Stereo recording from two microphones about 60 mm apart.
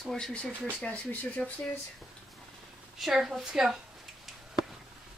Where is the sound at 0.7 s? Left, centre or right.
Left.